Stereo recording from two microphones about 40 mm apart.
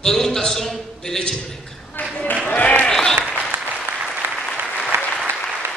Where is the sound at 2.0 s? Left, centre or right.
Left.